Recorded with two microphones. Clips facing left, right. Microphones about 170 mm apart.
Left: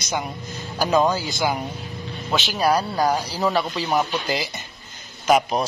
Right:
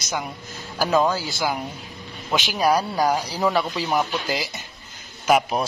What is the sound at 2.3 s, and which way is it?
A man's voice, 10° right (ahead or behind).